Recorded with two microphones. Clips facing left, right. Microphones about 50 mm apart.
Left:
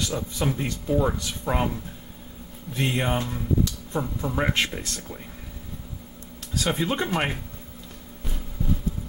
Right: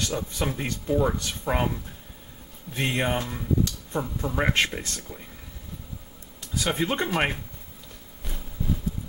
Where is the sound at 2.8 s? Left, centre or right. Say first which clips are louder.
Left 1 dB; centre.